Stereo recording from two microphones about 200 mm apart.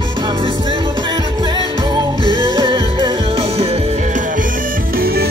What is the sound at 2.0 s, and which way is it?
Music, 20° right (ahead or behind).